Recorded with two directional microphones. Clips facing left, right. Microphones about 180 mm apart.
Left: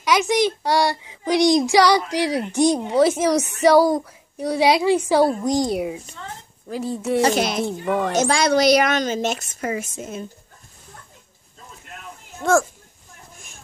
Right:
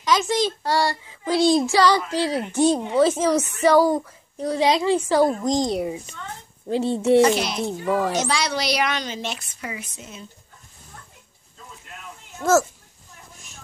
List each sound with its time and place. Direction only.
0.0 s a child's voice: 15° left (ahead or behind)
6.7 s speech: 25° right (ahead or behind)
7.3 s a woman's voice: 50° left (ahead or behind)
7.6 s a child's voice: centre (ahead or behind)
8.2 s a woman's voice: 50° left (ahead or behind)
12.4 s a child's voice: 5° right (ahead or behind)